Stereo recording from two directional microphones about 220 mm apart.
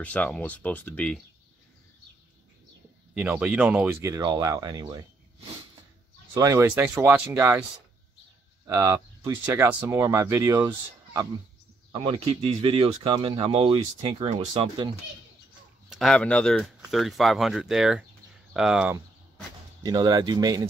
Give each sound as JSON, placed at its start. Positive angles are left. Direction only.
{"t": 0.0, "sound": "speech", "side_deg": 5}
{"t": 3.2, "sound": "speech", "side_deg": -5}
{"t": 6.3, "sound": "speech", "side_deg": -15}
{"t": 8.6, "sound": "speech", "side_deg": -15}
{"t": 11.9, "sound": "speech", "side_deg": -25}
{"t": 15.9, "sound": "speech", "side_deg": 0}
{"t": 19.8, "sound": "speech", "side_deg": -20}